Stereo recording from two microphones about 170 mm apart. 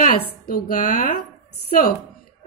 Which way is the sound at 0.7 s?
50° left (ahead or behind).